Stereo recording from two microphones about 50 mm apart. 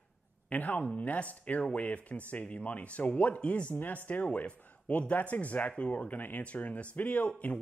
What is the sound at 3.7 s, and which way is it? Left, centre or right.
A man's voice, left.